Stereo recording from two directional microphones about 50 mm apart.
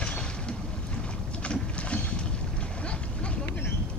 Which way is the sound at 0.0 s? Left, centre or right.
Centre.